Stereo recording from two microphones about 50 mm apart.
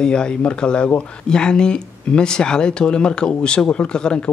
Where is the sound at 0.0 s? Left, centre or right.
Centre.